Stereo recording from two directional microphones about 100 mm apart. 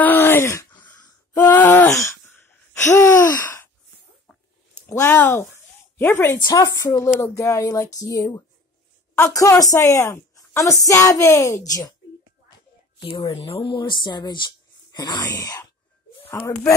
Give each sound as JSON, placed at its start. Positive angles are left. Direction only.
{"t": 0.0, "sound": "groan", "side_deg": 20}
{"t": 1.3, "sound": "a sound", "side_deg": 20}
{"t": 4.9, "sound": "speech", "side_deg": 20}
{"t": 6.4, "sound": "a woman's voice", "side_deg": 40}
{"t": 13.0, "sound": "speech", "side_deg": 60}
{"t": 15.3, "sound": "a woman's voice", "side_deg": 30}